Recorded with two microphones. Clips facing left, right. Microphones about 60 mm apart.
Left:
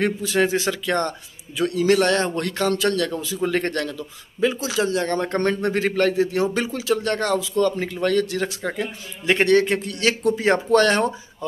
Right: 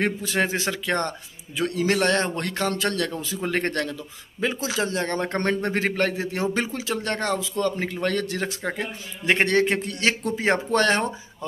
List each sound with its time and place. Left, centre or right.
0.0 s a man's voice: right